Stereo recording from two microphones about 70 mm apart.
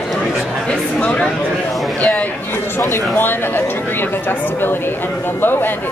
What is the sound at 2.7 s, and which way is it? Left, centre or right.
Speech, left.